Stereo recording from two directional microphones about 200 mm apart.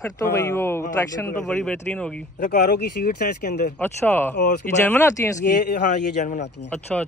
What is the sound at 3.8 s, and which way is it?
Speech, 10° left (ahead or behind).